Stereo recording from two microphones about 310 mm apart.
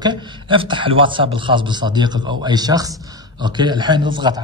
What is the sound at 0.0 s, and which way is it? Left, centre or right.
A man's voice, centre.